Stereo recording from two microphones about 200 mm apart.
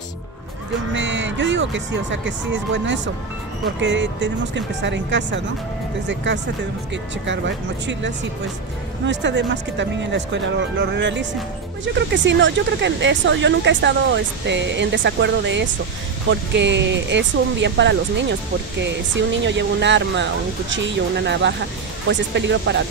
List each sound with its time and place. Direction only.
0.9 s speech: 65° right (ahead or behind)